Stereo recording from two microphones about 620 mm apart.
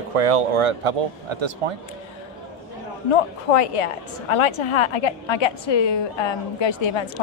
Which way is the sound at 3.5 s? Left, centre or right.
Left.